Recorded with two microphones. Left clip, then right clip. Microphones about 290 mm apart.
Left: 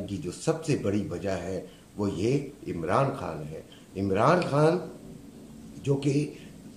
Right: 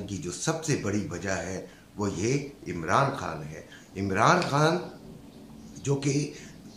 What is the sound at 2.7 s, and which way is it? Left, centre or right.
Speech, centre.